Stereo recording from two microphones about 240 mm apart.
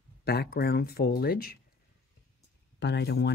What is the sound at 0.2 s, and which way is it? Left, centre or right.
Speech, left.